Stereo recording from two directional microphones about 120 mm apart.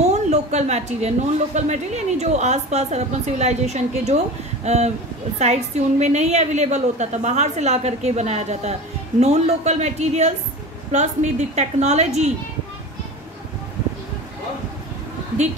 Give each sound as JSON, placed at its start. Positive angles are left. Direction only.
{"t": 0.1, "sound": "speech", "side_deg": -70}